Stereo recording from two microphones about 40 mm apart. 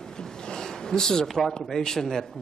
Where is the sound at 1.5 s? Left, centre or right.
Centre.